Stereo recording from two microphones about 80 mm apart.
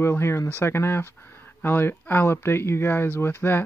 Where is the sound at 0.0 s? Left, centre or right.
Left.